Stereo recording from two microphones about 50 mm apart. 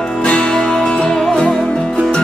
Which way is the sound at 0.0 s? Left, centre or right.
Centre.